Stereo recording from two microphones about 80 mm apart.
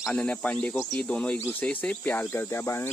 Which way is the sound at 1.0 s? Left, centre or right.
Centre.